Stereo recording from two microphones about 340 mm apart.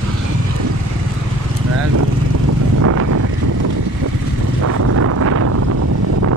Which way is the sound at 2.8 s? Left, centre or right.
Right.